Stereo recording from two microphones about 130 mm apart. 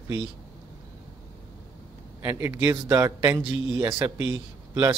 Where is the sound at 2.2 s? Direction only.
20° right (ahead or behind).